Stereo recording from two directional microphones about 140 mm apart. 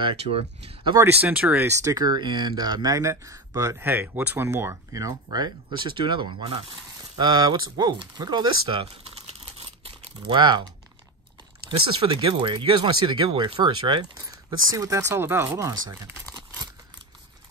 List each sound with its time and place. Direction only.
0.0 s speech: 40° right (ahead or behind)
0.9 s speech: 15° right (ahead or behind); by 8.8 s 35° right (ahead or behind)
9.6 s crumpling: 35° right (ahead or behind)
11.9 s speech: 35° right (ahead or behind)
14.2 s speech: 25° right (ahead or behind)
16.3 s crumpling: 30° right (ahead or behind)